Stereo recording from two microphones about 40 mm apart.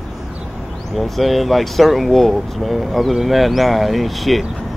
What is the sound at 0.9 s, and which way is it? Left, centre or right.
Speech, centre.